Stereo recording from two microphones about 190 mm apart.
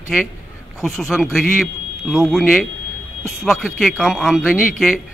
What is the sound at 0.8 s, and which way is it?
A man's voice, centre (ahead or behind).